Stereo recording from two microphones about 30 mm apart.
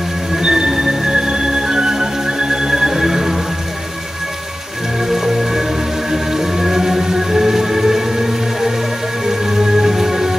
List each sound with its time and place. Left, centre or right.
0.3 s music: right
5.0 s music: centre